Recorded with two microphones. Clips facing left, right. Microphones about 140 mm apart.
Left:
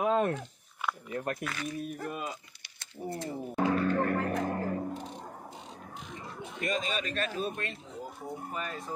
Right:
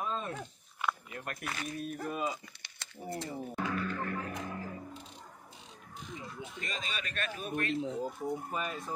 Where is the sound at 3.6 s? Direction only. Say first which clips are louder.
Left 9 dB; 45° left (ahead or behind).